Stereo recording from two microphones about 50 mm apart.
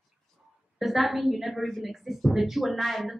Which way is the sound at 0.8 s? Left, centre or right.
Centre.